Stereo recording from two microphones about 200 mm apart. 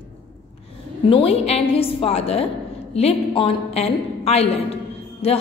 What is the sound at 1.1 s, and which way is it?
A woman's voice, 30° left (ahead or behind).